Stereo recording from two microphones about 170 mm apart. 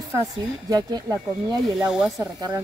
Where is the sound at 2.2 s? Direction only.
20° right (ahead or behind).